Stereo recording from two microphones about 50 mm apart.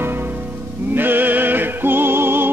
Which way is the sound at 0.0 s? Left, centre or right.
Right.